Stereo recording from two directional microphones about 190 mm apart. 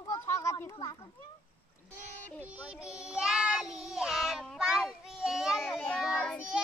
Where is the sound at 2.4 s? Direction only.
5° right (ahead or behind).